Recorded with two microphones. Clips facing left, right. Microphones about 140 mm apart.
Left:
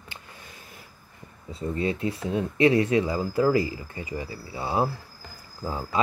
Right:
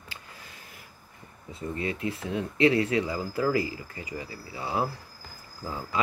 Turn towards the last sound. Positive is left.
turn(degrees=25)  # may be behind; listen again after turning